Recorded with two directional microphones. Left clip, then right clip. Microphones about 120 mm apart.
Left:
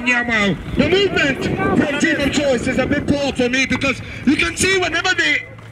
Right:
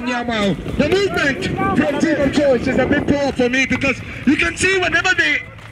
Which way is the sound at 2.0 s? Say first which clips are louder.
Right 1 dB; 50° left (ahead or behind).